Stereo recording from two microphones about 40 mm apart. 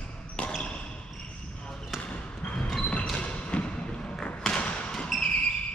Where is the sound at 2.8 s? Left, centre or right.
Left.